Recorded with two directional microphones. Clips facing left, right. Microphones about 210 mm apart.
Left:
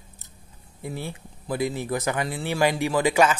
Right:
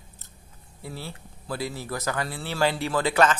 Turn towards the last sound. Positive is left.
turn(degrees=10)  # may be behind; listen again after turning